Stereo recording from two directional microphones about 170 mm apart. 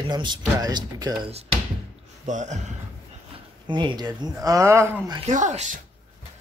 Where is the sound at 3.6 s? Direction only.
25° right (ahead or behind).